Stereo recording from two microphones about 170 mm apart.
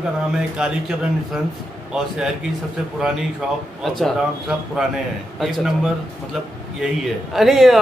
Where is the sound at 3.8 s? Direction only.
Centre (ahead or behind).